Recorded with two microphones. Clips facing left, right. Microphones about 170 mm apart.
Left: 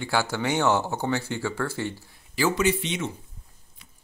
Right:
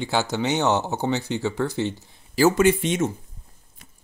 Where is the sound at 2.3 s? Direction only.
45° right (ahead or behind).